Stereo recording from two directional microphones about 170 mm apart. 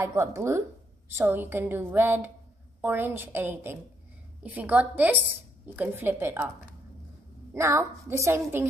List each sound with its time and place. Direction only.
0.0 s a woman's voice: 15° right (ahead or behind)
7.5 s a woman's voice: 15° right (ahead or behind)